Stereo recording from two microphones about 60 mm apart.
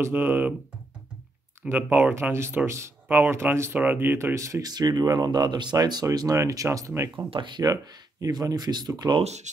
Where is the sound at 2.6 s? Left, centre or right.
Right.